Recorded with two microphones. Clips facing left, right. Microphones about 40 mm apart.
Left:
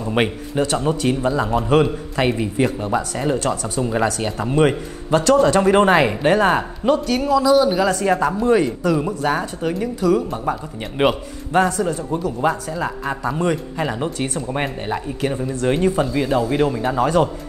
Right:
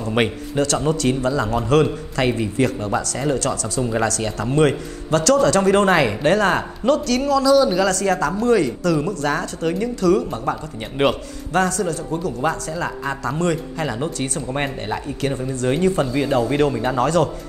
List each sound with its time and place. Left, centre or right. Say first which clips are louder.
0.6 s a man's voice: even; centre
11.5 s speech: left 2 dB; centre
12.4 s a man's voice: left 2 dB; centre
14.5 s speech: right 1 dB; centre
15.2 s a man's voice: left 1 dB; centre
17.0 s a man's voice: left 1 dB; centre